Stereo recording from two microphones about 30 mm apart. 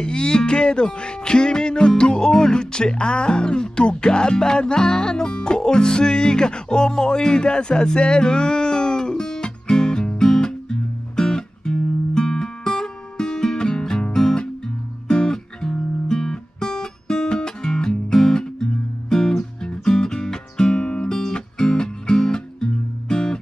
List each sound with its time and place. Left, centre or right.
0.0 s speech: left
6.9 s music: left